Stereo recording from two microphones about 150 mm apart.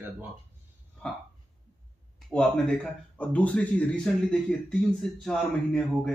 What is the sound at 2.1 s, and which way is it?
Speech, 5° left (ahead or behind).